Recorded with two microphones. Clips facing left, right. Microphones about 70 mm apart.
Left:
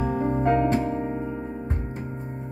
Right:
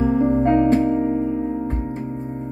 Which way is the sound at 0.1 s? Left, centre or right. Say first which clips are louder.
Right 6 dB; centre.